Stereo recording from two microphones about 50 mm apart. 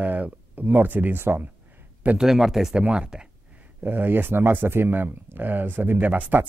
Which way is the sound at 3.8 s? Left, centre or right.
Right.